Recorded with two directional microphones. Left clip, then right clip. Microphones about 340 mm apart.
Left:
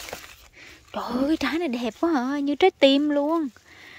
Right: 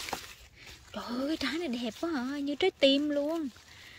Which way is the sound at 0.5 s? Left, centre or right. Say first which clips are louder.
Left 10 dB; centre.